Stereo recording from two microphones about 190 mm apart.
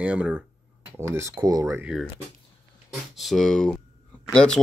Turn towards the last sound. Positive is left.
turn(degrees=5)  # may be behind; listen again after turning